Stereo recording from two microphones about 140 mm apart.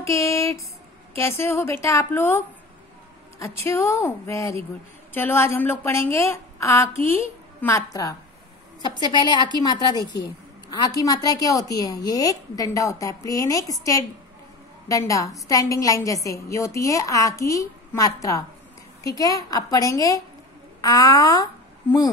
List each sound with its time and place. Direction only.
0.0 s a woman's voice: 20° left (ahead or behind)
3.6 s a woman's voice: 20° left (ahead or behind)